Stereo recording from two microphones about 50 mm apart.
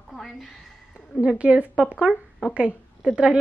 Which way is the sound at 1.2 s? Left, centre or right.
Right.